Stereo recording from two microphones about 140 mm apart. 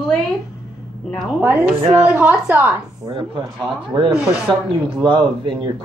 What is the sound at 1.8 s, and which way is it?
Speech, 35° right (ahead or behind).